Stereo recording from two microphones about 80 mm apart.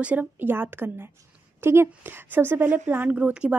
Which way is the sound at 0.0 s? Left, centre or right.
Centre.